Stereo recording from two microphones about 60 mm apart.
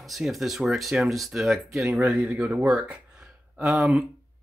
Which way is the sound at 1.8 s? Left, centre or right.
Right.